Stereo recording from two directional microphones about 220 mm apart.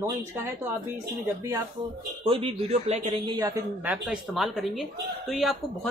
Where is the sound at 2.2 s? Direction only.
20° right (ahead or behind).